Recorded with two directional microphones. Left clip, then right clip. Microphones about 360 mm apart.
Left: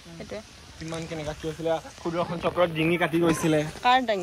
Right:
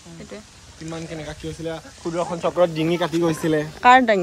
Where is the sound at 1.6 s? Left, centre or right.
Centre.